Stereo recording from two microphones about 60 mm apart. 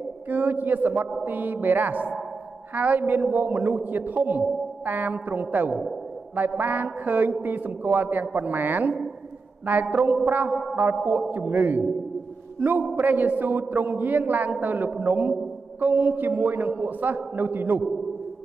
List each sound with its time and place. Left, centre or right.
0.3 s a man's voice: right
9.7 s mantra: right
10.3 s a man's voice: right
10.6 s music: centre
10.9 s a man's voice: right